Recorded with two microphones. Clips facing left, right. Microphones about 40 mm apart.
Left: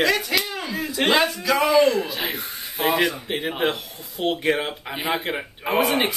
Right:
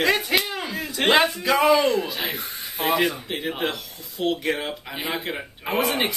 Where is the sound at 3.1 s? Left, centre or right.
Centre.